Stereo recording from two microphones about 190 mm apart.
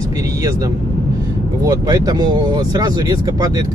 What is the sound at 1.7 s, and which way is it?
Speech, 20° right (ahead or behind).